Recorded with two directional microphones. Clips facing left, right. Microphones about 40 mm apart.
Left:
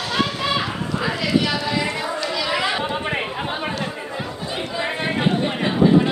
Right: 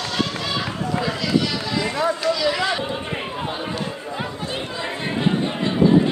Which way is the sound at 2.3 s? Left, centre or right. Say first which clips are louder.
Right 1 dB; centre.